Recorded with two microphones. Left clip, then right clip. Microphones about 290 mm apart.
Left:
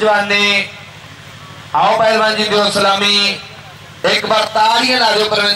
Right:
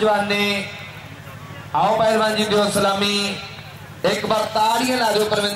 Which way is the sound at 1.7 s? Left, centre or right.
Centre.